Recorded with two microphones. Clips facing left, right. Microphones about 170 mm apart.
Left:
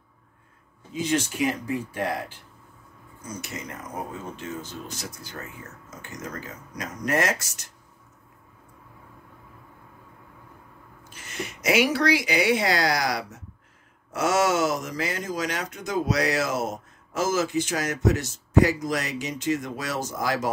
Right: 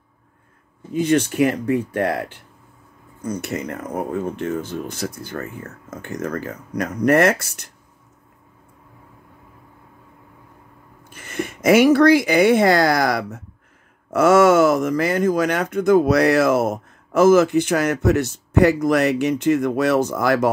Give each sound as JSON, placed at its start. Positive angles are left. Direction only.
{"t": 0.9, "sound": "speech", "side_deg": -60}
{"t": 11.1, "sound": "speech", "side_deg": -55}